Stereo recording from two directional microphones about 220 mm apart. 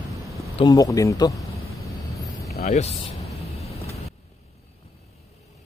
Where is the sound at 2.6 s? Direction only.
30° left (ahead or behind).